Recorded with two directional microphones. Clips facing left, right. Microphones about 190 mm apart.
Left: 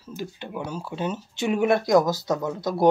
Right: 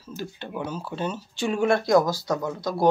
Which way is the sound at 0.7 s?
15° left (ahead or behind).